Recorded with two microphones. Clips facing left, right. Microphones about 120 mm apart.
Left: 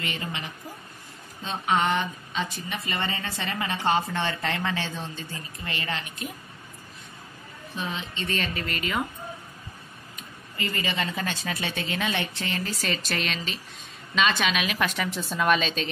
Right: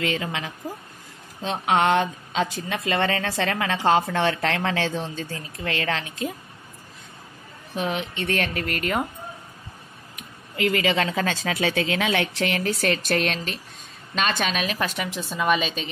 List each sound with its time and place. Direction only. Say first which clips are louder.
0.0 s speech: right 7 dB; 90° right
1.4 s speech: right 4 dB; 80° right
7.7 s speech: right 6 dB; 80° right; by 9.0 s 55° right (ahead or behind)
10.1 s a woman's voice: right 6 dB; 85° right; by 14.9 s 35° right (ahead or behind)
15.1 s speech: right 1 dB; centre (ahead or behind)